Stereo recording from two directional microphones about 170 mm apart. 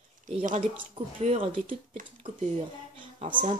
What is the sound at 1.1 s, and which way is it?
Speech, 45° right (ahead or behind).